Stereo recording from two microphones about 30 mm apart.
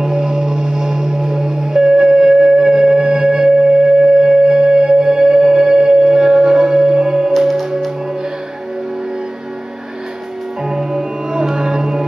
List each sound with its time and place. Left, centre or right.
0.0 s music: centre
7.3 s music: centre
10.6 s music: centre